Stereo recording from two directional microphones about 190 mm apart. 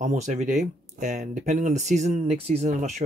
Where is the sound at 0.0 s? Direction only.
40° right (ahead or behind).